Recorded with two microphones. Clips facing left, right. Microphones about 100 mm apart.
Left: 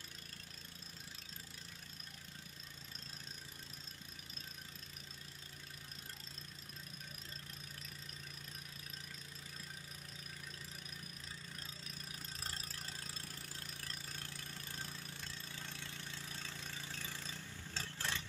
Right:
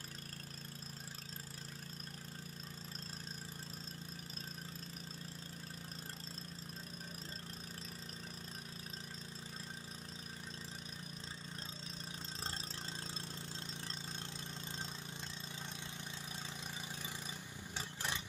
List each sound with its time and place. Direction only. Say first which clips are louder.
13.0 s engine: right 4 dB; 25° right (ahead or behind)